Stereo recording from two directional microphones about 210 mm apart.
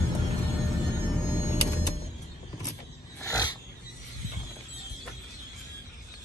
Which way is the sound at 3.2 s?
15° left (ahead or behind).